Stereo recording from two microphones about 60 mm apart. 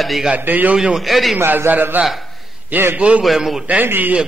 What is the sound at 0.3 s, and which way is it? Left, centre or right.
Speech, right.